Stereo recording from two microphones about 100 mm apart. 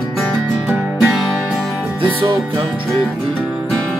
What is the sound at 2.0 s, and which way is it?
Music, 60° right (ahead or behind).